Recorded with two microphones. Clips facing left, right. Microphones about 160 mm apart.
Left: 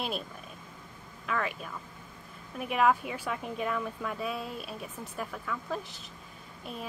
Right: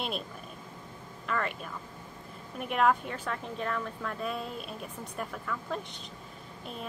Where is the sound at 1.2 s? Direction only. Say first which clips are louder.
Even; centre (ahead or behind).